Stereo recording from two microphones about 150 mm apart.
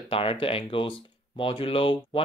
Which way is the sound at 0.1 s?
35° left (ahead or behind).